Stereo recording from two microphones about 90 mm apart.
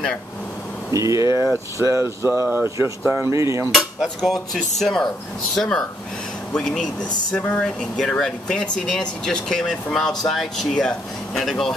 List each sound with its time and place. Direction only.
0.9 s speech: 40° right (ahead or behind)
3.7 s speech: centre (ahead or behind)